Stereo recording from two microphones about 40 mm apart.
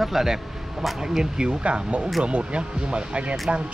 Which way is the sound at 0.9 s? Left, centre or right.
Centre.